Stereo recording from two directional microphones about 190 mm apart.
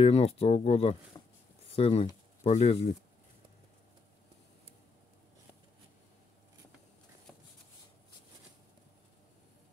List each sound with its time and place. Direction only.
0.0 s speech: 30° left (ahead or behind)